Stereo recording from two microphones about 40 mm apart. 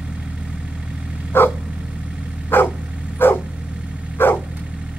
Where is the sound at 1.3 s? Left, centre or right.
Left.